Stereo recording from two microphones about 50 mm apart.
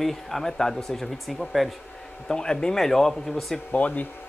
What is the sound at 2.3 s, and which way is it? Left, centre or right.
Speech, centre.